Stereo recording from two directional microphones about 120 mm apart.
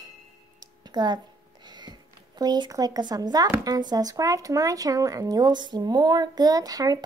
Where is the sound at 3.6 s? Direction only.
30° right (ahead or behind).